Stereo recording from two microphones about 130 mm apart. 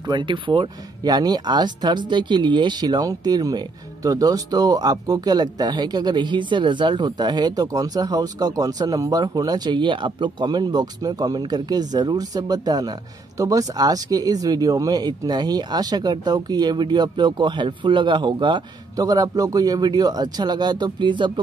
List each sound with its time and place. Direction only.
0.0 s speech: 35° right (ahead or behind)